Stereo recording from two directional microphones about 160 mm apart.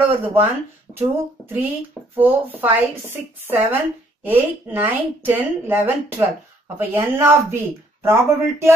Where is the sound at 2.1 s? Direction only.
10° right (ahead or behind).